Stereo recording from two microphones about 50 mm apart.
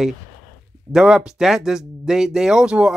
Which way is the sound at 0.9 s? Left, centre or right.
Centre.